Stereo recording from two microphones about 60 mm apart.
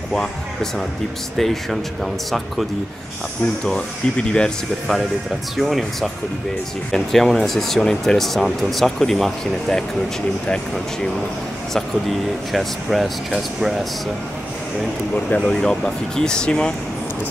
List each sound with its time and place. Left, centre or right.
0.1 s speech: centre
3.6 s speech: centre
5.6 s speech: centre
11.7 s speech: centre
15.2 s speech: centre